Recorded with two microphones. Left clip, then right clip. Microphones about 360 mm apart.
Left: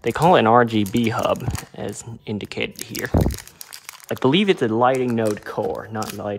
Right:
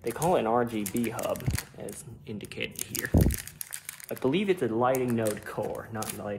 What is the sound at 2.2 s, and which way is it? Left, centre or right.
Speech, centre.